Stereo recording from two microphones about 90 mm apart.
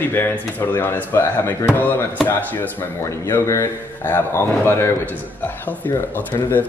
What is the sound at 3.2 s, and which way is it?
Speech, 35° left (ahead or behind).